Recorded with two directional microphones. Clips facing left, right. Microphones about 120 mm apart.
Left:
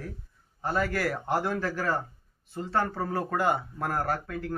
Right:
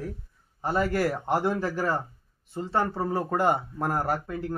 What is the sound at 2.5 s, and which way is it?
Speech, 10° right (ahead or behind).